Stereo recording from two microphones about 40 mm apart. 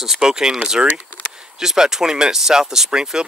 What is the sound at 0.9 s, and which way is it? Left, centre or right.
Speech, right.